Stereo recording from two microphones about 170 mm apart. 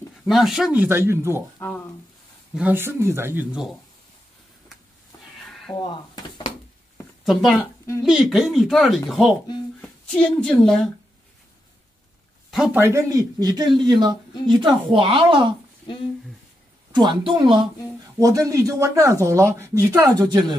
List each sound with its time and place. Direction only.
0.3 s speech: centre (ahead or behind)
1.6 s speech: 10° left (ahead or behind)
2.5 s speech: 10° right (ahead or behind)
5.7 s speech: 15° left (ahead or behind)
7.2 s speech: centre (ahead or behind)
12.4 s speech: 5° right (ahead or behind)
12.8 s a woman's voice: 15° right (ahead or behind)
16.9 s speech: 25° right (ahead or behind)